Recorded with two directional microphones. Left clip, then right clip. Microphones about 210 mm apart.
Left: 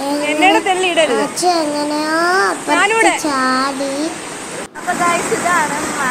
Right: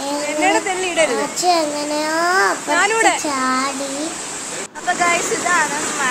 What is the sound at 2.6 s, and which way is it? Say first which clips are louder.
Speech: left 3 dB; 15° right (ahead or behind).